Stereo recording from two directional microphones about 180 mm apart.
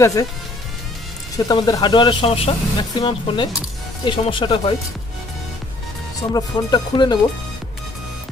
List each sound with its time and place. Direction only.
0.0 s speech: 15° left (ahead or behind)
1.3 s speech: 20° left (ahead or behind)
6.3 s speech: 25° left (ahead or behind)